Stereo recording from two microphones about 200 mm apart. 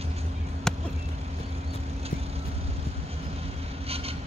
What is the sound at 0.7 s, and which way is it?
Vehicle, 5° left (ahead or behind).